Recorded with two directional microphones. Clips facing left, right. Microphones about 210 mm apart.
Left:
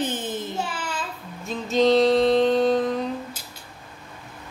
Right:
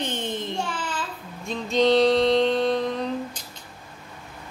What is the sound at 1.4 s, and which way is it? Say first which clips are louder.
Music: left 1 dB; centre (ahead or behind).